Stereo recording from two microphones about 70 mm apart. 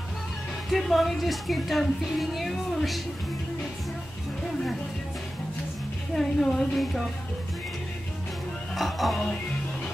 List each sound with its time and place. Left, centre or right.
0.7 s speech: centre
6.1 s speech: centre
8.7 s speech: centre